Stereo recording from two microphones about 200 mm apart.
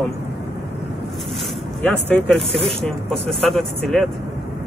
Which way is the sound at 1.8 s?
5° left (ahead or behind).